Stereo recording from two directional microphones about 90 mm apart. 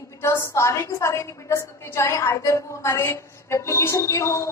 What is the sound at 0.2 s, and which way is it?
A woman's voice, 30° left (ahead or behind).